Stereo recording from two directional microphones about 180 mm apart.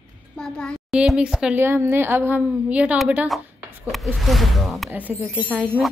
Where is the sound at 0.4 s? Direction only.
5° left (ahead or behind).